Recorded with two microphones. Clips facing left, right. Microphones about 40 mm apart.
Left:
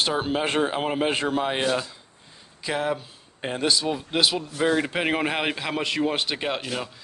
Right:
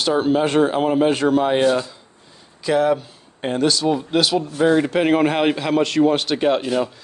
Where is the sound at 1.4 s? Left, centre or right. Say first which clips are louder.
Right 7 dB; centre.